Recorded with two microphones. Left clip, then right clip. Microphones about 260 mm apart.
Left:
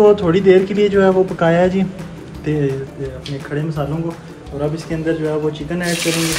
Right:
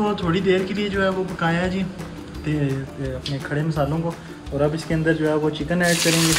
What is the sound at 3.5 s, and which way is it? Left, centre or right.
Speech, right.